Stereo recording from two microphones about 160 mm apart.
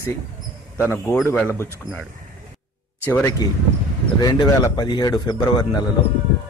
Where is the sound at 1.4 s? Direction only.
15° left (ahead or behind).